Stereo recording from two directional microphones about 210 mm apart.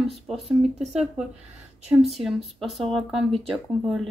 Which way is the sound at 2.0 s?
Centre (ahead or behind).